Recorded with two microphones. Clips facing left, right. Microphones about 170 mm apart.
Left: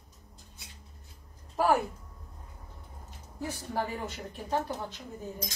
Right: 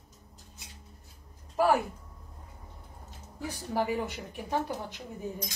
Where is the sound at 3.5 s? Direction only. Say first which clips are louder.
Right 3 dB; 15° right (ahead or behind).